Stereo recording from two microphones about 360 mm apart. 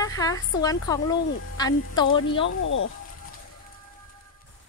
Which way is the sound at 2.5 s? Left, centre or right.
Left.